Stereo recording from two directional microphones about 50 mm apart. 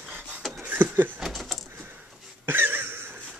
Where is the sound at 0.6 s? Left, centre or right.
Right.